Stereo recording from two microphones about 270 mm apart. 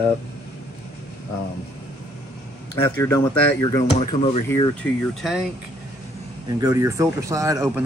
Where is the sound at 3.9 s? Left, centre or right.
Left.